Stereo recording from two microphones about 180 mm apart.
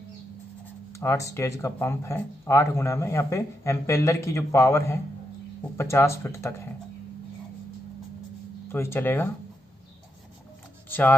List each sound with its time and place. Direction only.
0.9 s speech: 15° left (ahead or behind)
8.6 s speech: 15° left (ahead or behind)
10.9 s speech: 10° left (ahead or behind)